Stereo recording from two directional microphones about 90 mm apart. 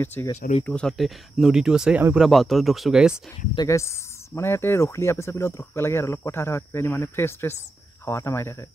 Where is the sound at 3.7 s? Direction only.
30° left (ahead or behind).